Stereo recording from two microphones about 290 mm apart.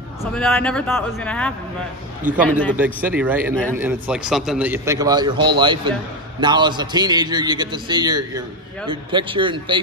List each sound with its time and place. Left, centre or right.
0.2 s a man's voice: centre